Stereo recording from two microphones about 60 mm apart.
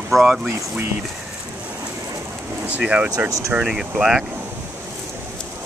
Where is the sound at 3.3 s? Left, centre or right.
Right.